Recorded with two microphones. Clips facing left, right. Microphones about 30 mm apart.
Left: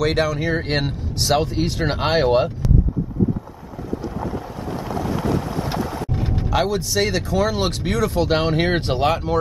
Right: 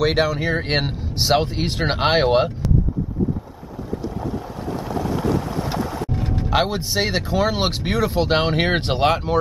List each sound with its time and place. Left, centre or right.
0.0 s speech: centre
4.6 s boat: centre
6.5 s speech: right
9.1 s speech: centre